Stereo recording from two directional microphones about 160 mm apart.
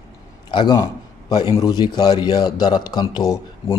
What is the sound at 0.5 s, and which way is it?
A man's voice, 25° left (ahead or behind).